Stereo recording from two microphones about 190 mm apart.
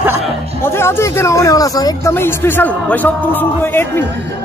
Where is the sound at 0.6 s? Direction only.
10° left (ahead or behind).